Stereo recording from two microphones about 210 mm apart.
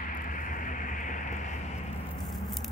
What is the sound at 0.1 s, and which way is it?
Vehicle, 40° left (ahead or behind).